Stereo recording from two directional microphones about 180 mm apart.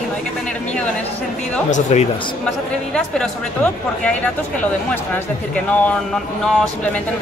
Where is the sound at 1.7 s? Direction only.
40° left (ahead or behind).